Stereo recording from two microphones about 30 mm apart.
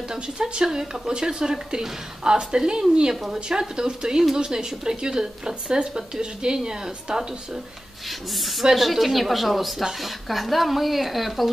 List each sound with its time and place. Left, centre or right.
0.1 s speech: right
8.1 s speech: centre